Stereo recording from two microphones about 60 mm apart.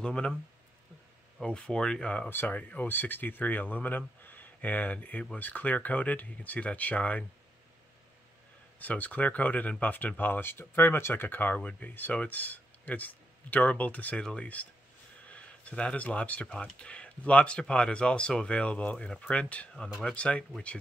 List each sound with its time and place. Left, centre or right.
0.0 s speech: centre
1.4 s speech: centre
2.2 s speech: left
8.7 s speech: left